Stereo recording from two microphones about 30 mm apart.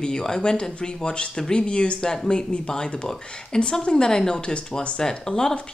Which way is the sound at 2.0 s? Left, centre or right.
Left.